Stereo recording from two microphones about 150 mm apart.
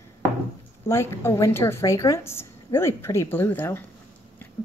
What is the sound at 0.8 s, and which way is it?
A woman's voice, 20° left (ahead or behind).